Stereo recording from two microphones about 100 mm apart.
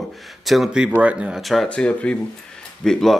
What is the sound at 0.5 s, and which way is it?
A man's voice, 5° right (ahead or behind).